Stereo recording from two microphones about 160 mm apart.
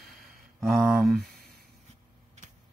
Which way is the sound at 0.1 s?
Centre (ahead or behind).